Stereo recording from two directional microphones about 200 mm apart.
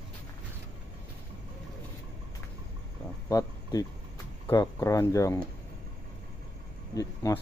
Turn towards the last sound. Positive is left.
turn(degrees=15)  # may be behind; listen again after turning